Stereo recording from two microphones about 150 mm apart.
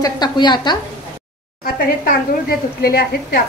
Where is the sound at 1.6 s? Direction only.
80° left.